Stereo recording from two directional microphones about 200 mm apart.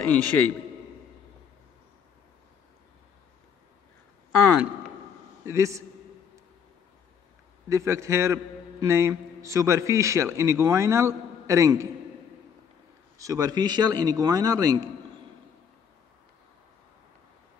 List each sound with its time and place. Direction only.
0.0 s a man's voice: 10° left (ahead or behind)
5.4 s a man's voice: 15° right (ahead or behind)
7.7 s a man's voice: 15° right (ahead or behind)
13.2 s a man's voice: 15° right (ahead or behind)